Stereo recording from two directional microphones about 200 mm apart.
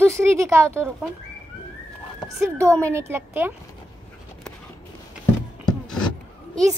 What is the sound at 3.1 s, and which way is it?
Speech, 10° right (ahead or behind).